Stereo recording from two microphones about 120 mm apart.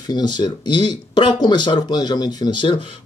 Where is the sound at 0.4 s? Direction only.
40° left (ahead or behind).